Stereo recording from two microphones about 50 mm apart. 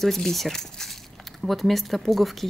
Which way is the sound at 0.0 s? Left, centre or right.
Centre.